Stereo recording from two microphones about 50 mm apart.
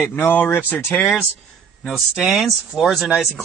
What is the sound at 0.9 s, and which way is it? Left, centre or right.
Speech, left.